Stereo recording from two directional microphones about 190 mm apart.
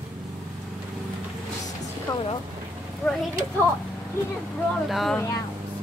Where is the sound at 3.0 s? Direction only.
5° left (ahead or behind).